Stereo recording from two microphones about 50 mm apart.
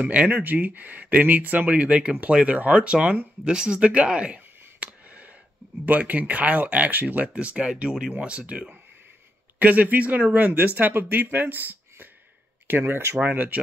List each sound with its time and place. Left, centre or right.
0.0 s speech: right
3.4 s a sound: centre
5.9 s speech: right
7.3 s speech: right
12.6 s speech: right
13.2 s speech: right